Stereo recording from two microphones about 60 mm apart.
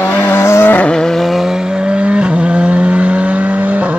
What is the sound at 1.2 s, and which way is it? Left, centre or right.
Vehicle, centre.